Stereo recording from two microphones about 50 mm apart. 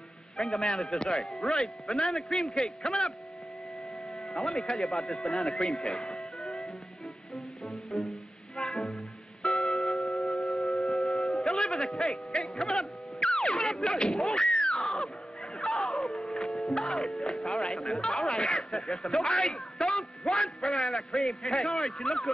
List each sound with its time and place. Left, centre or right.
0.4 s a man's voice: centre
4.4 s speech: centre
5.9 s music: centre
7.6 s music: centre
13.8 s speech: centre
14.8 s music: centre
18.4 s speech: centre